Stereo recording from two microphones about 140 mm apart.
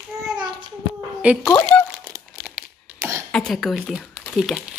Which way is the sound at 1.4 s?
20° left (ahead or behind).